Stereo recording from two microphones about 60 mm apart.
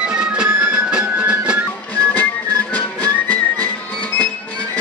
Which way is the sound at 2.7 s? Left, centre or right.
Left.